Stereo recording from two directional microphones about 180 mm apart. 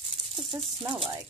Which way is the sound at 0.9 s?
25° right (ahead or behind).